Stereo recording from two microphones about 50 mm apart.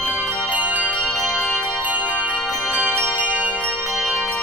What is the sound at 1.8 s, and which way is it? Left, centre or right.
Music, right.